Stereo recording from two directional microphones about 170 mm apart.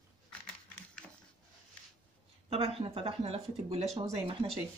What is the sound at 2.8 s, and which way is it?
Speech, 35° right (ahead or behind).